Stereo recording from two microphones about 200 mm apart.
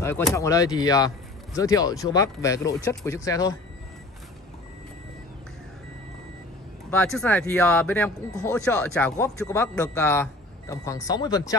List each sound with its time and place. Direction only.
0.3 s a man's voice: 15° left (ahead or behind)
6.9 s a man's voice: 5° left (ahead or behind)
9.2 s a man's voice: 15° left (ahead or behind)